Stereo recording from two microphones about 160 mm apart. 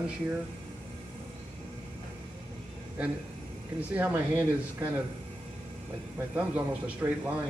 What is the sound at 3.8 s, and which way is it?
A man's voice, 10° right (ahead or behind).